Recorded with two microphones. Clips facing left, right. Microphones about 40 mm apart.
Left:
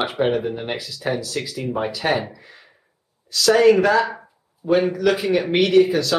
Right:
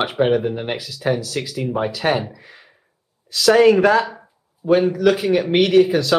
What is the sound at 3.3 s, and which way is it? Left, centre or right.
Speech, right.